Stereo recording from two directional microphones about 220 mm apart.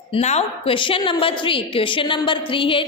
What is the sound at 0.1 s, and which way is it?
A woman's voice, 30° left (ahead or behind).